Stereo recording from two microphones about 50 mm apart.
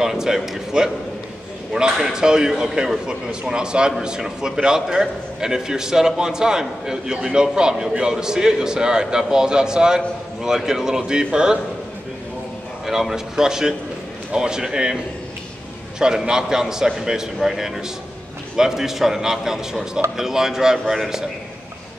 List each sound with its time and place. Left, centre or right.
0.0 s a man's voice: centre
12.8 s a man's voice: centre
16.0 s a man's voice: centre